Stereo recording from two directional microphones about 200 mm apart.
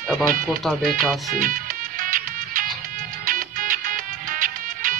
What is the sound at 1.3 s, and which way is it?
Music, 45° right (ahead or behind).